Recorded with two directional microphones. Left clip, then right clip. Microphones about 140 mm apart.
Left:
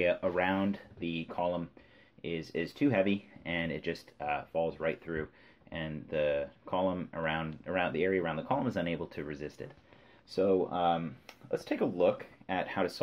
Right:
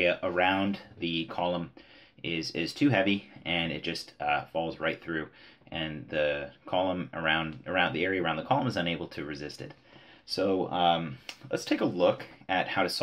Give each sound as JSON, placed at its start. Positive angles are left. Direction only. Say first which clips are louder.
{"t": 0.0, "sound": "speech", "louder": "right 3 dB", "side_deg": 50}